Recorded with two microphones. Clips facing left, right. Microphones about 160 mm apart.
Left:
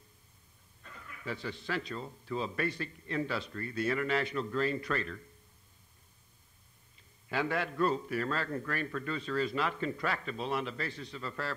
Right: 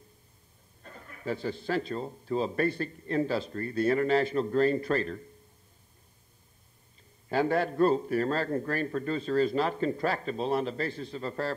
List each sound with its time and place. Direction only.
0.8 s a man's voice: 40° right (ahead or behind)
7.2 s a man's voice: 40° right (ahead or behind)